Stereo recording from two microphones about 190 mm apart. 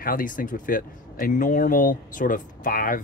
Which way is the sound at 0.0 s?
45° left (ahead or behind).